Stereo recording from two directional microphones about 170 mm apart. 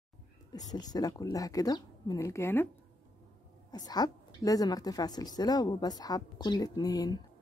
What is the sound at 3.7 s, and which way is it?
A woman's voice, 25° left (ahead or behind).